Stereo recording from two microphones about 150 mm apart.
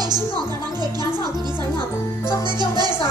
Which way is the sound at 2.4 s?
30° right (ahead or behind).